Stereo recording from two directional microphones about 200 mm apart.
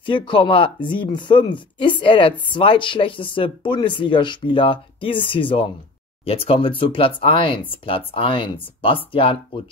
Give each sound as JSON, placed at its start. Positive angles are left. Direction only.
{"t": 0.0, "sound": "speech", "side_deg": 25}